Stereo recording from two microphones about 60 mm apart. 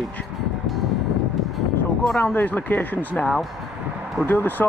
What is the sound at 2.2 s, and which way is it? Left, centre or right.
Speech, left.